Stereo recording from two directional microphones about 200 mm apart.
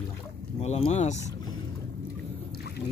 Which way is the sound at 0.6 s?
30° left (ahead or behind).